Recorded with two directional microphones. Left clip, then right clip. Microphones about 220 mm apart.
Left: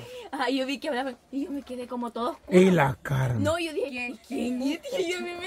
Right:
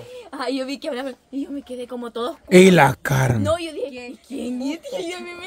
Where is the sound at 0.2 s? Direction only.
10° right (ahead or behind).